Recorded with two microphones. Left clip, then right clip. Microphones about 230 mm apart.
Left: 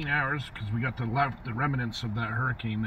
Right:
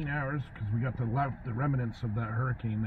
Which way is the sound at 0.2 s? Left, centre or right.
Left.